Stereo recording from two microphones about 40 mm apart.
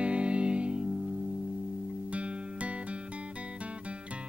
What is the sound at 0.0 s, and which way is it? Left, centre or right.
Music, right.